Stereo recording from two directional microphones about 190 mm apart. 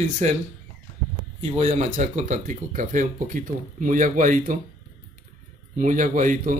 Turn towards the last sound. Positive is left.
turn(degrees=-45)  # may be behind; listen again after turning